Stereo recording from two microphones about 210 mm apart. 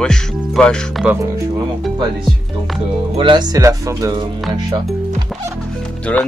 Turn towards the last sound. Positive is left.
turn(degrees=5)  # may be behind; listen again after turning